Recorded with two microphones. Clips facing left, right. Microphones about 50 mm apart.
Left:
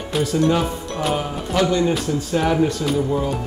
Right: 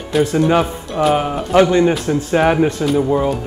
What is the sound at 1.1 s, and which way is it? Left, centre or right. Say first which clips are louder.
Music: right 7 dB; right.